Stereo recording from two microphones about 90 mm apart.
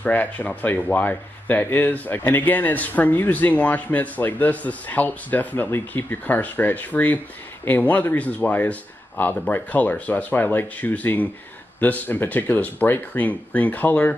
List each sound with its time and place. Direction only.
0.0 s speech: 20° left (ahead or behind)